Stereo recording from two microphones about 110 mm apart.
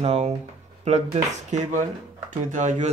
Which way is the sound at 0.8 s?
90° right.